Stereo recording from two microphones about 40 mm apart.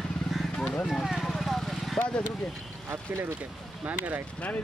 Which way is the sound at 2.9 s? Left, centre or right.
Right.